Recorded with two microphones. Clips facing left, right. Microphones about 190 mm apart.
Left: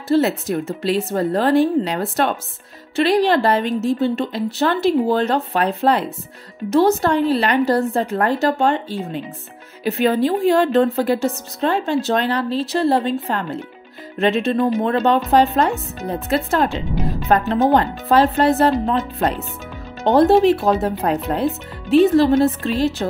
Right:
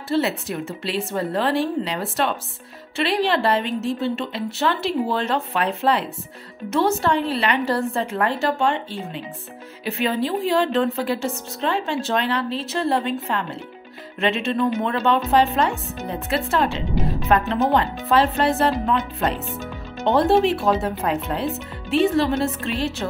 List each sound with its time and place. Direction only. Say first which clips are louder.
0.1 s a woman's voice: left 5 dB; 40° left (ahead or behind)